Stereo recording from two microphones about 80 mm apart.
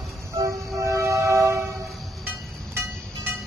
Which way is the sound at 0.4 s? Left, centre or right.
Right.